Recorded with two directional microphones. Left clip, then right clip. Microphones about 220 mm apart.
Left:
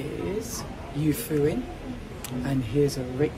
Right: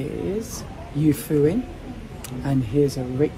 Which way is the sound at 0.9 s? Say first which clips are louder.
Right 6 dB; 25° right (ahead or behind).